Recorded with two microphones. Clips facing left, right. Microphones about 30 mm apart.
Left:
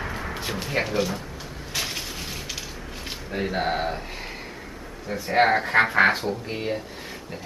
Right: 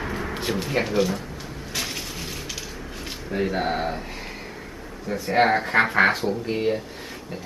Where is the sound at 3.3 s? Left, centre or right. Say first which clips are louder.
Right 1 dB; centre.